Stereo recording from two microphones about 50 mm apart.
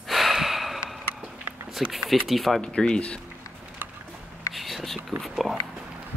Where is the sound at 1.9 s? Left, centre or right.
Centre.